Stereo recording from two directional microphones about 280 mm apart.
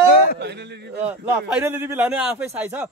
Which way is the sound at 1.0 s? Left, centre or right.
Centre.